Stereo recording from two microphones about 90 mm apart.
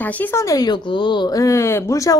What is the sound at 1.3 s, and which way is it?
Speech, 35° left (ahead or behind).